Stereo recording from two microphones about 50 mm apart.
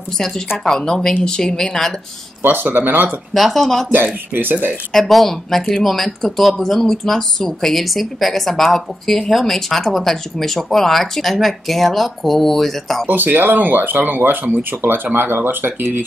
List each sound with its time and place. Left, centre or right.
0.7 s a woman's voice: centre
2.4 s speech: right
3.3 s speech: centre
3.9 s speech: right
4.9 s speech: centre
13.1 s speech: right